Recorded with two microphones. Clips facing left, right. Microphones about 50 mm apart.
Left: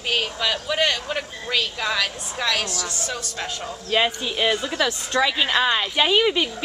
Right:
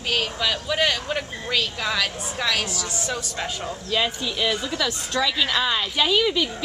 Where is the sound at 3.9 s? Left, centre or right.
Left.